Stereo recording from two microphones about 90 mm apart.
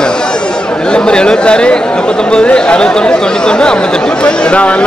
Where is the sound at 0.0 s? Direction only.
10° left (ahead or behind).